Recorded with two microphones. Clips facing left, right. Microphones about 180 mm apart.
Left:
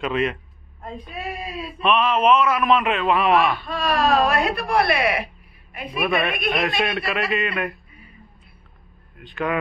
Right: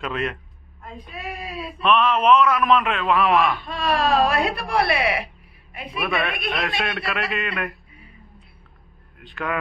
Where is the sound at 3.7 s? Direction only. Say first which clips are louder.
Left 1 dB; 30° right (ahead or behind).